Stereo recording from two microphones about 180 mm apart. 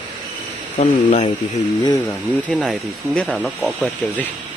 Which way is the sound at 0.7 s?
40° left (ahead or behind).